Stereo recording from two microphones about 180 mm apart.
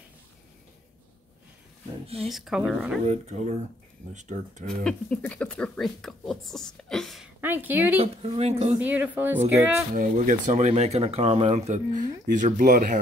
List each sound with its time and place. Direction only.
2.2 s speech: centre (ahead or behind)
3.1 s speech: 40° right (ahead or behind)
4.6 s speech: 5° left (ahead or behind)
7.3 s a woman's voice: 10° right (ahead or behind)
8.0 s speech: 35° right (ahead or behind)
8.8 s speech: 10° right (ahead or behind)
10.2 s speech: 40° right (ahead or behind)